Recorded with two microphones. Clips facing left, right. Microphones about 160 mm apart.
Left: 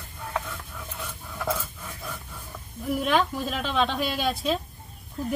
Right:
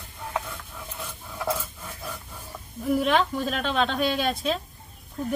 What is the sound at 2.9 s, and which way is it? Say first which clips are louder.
A woman's voice: right 1 dB; centre (ahead or behind).